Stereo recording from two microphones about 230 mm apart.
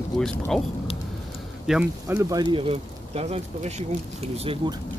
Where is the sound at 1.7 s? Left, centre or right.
Centre; by 3.8 s right.